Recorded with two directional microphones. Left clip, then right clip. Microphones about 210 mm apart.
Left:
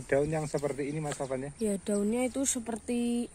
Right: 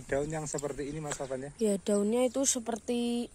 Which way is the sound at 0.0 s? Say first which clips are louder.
Left 4 dB; centre (ahead or behind).